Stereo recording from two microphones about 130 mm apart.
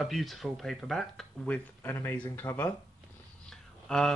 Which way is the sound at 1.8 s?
15° left (ahead or behind).